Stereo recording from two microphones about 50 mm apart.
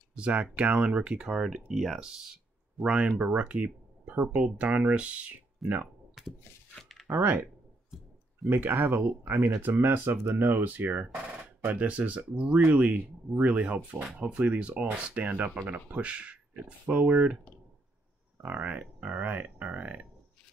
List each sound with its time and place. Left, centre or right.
0.1 s speech: right
5.6 s speech: centre
6.2 s a sound: centre
8.5 s speech: right
18.4 s speech: right